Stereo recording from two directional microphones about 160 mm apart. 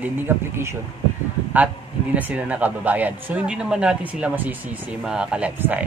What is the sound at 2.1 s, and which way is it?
Speech, 10° right (ahead or behind).